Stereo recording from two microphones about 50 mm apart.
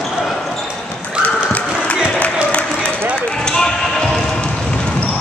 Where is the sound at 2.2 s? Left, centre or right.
Left.